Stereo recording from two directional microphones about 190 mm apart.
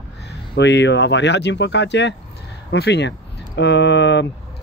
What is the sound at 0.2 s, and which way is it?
Speech, 65° left (ahead or behind).